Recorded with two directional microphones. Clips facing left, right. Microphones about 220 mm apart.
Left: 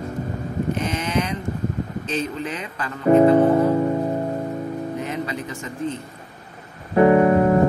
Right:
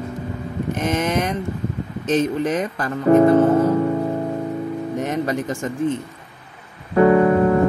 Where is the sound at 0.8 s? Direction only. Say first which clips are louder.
Right 3 dB; 50° right (ahead or behind).